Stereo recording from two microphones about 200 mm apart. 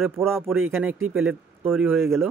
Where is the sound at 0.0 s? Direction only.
10° right (ahead or behind).